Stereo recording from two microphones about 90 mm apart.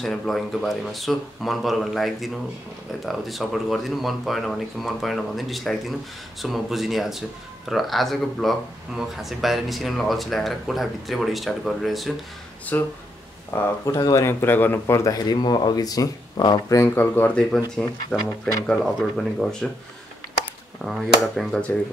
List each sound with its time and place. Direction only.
0.0 s speech: 5° left (ahead or behind)
12.7 s speech: 20° left (ahead or behind)
13.8 s speech: 40° left (ahead or behind)
14.4 s speech: 20° left (ahead or behind)
15.1 s speech: 50° left (ahead or behind)
16.8 s speech: 20° left (ahead or behind)
18.4 s speech: 5° left (ahead or behind)
20.8 s speech: centre (ahead or behind)